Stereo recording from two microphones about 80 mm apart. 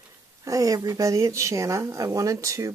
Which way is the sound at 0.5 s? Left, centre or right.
Right.